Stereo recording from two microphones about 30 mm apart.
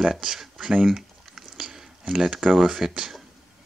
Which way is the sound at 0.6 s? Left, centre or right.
Right.